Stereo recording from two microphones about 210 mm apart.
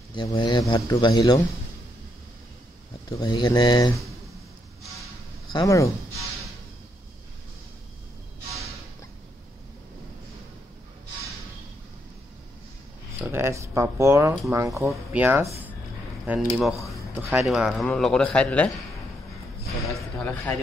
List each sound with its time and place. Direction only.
0.1 s speech: 20° left (ahead or behind)
3.1 s speech: 20° left (ahead or behind)
5.5 s speech: 15° left (ahead or behind)
13.2 s a man's voice: 10° right (ahead or behind)
16.9 s a sound: 10° right (ahead or behind)
17.5 s a man's voice: centre (ahead or behind)
20.2 s a man's voice: 5° left (ahead or behind)